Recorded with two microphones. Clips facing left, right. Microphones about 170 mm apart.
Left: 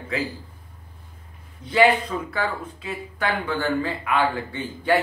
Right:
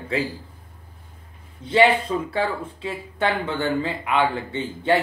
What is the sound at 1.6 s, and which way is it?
Speech, 25° right (ahead or behind).